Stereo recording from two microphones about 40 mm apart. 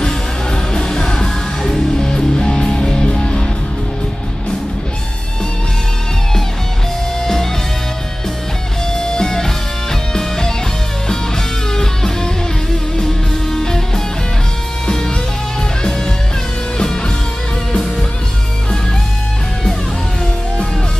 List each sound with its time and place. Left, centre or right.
0.0 s music: centre
8.9 s music: centre
11.7 s music: centre
16.7 s music: centre